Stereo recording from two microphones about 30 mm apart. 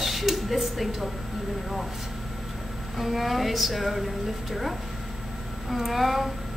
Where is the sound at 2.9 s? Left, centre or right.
Centre.